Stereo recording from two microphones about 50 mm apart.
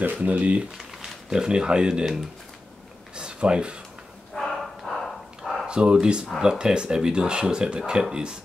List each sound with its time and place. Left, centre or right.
0.0 s speech: right
1.0 s speech: centre
3.2 s a sound: centre
4.4 s dog: centre
5.7 s speech: centre